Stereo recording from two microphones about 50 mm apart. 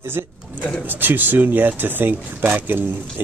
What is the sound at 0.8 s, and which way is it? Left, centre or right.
Speech, right.